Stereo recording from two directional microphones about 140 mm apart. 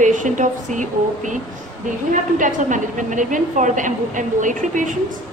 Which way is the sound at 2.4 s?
65° right (ahead or behind).